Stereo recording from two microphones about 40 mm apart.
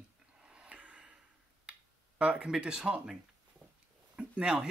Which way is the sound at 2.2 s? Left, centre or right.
Right.